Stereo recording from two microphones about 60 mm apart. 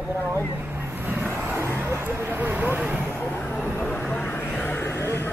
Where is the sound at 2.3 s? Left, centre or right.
Right.